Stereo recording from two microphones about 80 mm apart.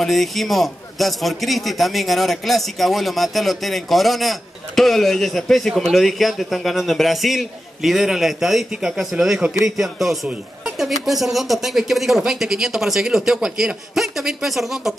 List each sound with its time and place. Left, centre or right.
0.0 s a man's voice: centre